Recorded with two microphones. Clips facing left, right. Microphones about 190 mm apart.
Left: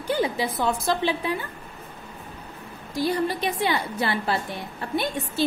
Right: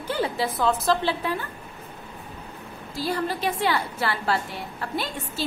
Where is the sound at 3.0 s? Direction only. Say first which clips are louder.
Left 3 dB; 20° left (ahead or behind).